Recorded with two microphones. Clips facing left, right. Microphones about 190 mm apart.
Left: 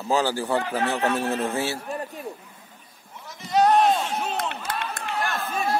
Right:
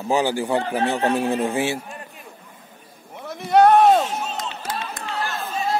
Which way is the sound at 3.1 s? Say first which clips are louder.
Right 6 dB; 60° right (ahead or behind).